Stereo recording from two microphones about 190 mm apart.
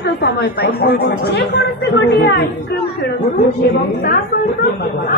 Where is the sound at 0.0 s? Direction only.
60° left (ahead or behind).